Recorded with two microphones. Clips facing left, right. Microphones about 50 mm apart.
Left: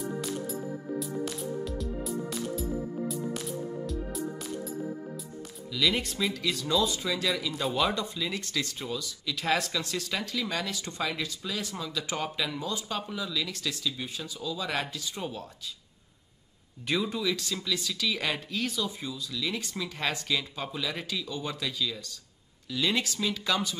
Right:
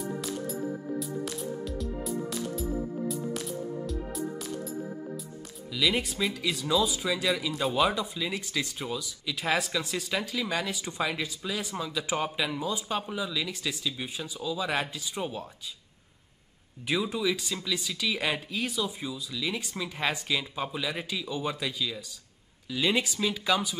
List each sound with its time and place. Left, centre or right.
0.2 s music: centre
5.7 s speech: centre
16.8 s speech: centre